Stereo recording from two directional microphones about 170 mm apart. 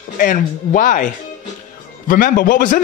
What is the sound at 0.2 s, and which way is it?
A man's voice, 50° left (ahead or behind).